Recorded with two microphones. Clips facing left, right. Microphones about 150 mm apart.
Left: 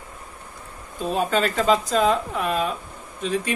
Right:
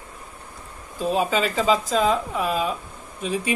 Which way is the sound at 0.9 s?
Centre (ahead or behind).